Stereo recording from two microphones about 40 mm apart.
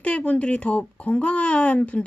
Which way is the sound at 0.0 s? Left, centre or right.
Left.